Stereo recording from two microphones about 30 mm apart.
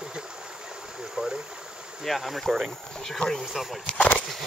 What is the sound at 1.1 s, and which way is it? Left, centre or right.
Stream, right.